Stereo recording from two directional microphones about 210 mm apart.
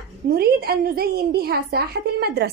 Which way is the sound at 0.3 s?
45° right (ahead or behind).